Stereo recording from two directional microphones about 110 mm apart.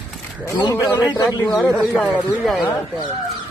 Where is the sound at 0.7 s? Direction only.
30° left (ahead or behind).